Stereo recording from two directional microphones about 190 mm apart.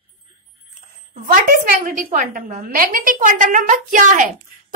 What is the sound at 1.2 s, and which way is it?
A woman's voice, 50° right (ahead or behind).